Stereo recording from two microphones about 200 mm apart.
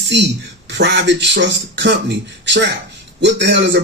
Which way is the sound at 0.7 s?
60° right (ahead or behind).